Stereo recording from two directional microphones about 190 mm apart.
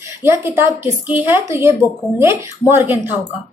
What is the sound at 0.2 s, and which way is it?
A woman's voice, 10° right (ahead or behind).